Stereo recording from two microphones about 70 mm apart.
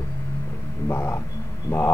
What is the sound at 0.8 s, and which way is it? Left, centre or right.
Speech, left.